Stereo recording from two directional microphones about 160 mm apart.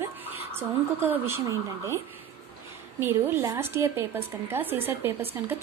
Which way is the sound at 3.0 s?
15° right (ahead or behind).